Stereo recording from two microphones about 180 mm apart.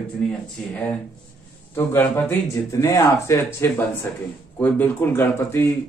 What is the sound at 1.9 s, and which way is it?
Speech, 15° left (ahead or behind).